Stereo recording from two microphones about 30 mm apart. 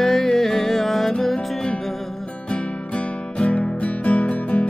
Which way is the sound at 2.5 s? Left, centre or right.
Left.